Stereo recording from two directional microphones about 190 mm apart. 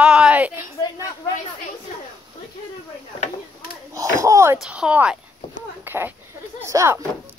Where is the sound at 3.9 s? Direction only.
15° right (ahead or behind).